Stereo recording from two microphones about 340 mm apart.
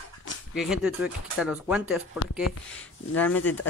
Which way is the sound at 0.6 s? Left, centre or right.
Centre.